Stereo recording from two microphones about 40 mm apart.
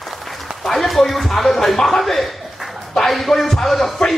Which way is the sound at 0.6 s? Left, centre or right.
Centre.